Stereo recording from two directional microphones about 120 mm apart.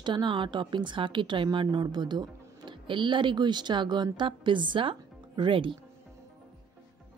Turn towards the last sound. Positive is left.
turn(degrees=-45)  # may be behind; listen again after turning